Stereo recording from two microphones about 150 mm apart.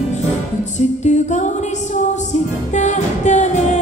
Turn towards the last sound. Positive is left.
turn(degrees=50)  # may be behind; listen again after turning